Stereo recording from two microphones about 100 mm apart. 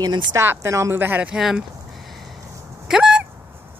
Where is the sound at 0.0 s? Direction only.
40° right (ahead or behind).